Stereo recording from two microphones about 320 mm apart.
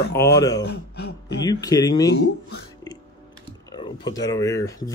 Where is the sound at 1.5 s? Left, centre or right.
Centre.